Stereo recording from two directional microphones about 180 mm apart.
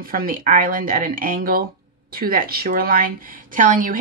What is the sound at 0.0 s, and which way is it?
A woman's voice, 50° right (ahead or behind).